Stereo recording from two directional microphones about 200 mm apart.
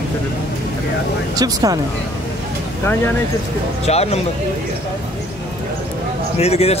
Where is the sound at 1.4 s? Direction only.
20° right (ahead or behind).